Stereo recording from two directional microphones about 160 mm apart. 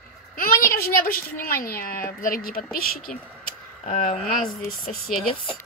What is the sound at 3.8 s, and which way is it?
Speech, 45° left (ahead or behind).